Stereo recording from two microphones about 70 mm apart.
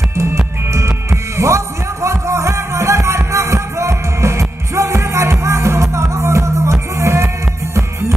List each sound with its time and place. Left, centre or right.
0.7 s music: right